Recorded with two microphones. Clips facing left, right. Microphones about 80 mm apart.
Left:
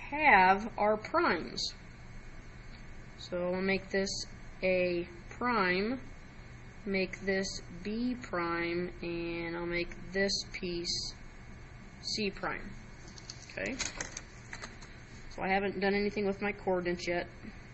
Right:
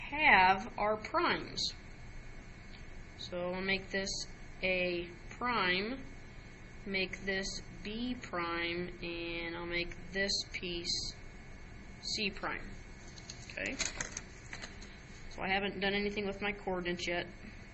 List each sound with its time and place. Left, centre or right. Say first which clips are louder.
0.0 s a woman's voice: left 3 dB; centre
3.2 s a woman's voice: left 4 dB; centre
15.3 s speech: left 4 dB; centre